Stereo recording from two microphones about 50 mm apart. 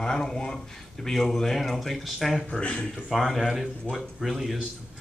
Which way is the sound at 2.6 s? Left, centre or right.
Left.